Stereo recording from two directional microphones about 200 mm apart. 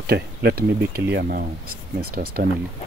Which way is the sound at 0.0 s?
55° right (ahead or behind).